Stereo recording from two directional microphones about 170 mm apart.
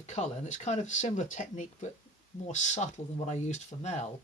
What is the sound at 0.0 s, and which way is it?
Speech, 45° left (ahead or behind).